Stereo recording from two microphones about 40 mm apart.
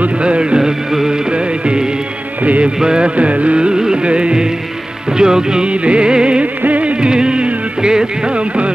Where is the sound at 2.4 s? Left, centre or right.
Right.